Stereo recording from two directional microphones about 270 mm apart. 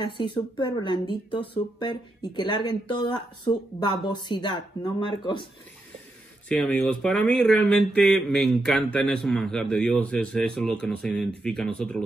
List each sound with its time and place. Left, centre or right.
0.0 s speech: centre
6.5 s speech: centre